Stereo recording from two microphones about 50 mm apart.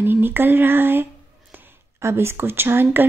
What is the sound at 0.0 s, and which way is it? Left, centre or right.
Speech, right.